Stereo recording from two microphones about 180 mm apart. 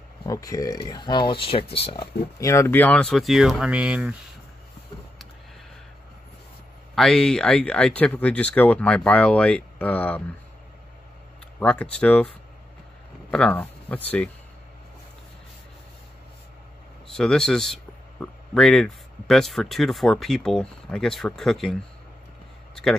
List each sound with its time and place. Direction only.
0.2 s speech: 20° left (ahead or behind)
2.3 s speech: 15° left (ahead or behind); by 4.2 s 5° right (ahead or behind)
7.0 s speech: 5° left (ahead or behind)
11.6 s speech: 5° left (ahead or behind)
13.3 s speech: 10° left (ahead or behind)
17.1 s speech: 5° left (ahead or behind)